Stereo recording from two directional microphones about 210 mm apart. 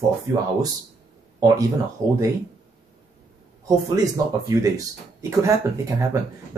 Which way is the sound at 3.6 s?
15° right (ahead or behind).